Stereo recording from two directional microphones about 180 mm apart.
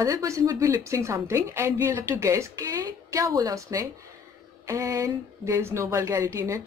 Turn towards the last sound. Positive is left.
turn(degrees=-15)  # may be behind; listen again after turning